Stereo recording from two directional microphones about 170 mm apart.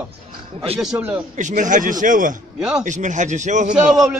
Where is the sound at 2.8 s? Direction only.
45° right (ahead or behind).